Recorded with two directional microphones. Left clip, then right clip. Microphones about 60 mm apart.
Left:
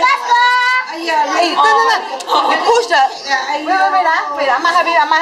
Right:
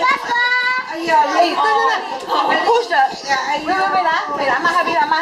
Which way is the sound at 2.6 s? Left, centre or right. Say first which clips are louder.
Left 3 dB; left.